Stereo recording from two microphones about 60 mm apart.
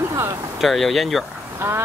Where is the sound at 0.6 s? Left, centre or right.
Centre.